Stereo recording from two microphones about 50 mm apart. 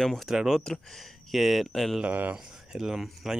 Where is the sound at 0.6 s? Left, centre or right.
Centre.